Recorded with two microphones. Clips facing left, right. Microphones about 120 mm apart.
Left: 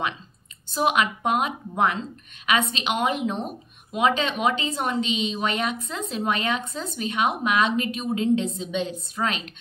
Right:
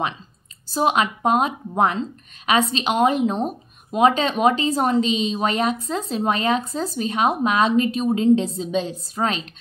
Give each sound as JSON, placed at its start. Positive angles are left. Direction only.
{"t": 0.7, "sound": "speech", "side_deg": -35}